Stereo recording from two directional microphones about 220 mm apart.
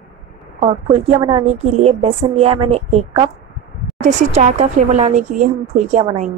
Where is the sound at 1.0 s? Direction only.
30° right (ahead or behind).